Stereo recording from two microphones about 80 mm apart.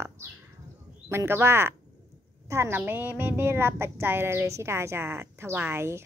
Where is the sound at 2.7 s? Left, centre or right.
Right.